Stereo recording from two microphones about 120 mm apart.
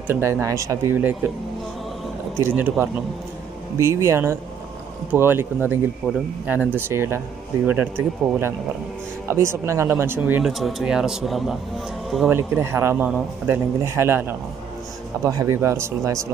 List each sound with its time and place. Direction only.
0.1 s a man's voice: 20° right (ahead or behind)
2.4 s a man's voice: 15° right (ahead or behind)
10.4 s speech: centre (ahead or behind)
12.3 s a man's voice: 20° right (ahead or behind)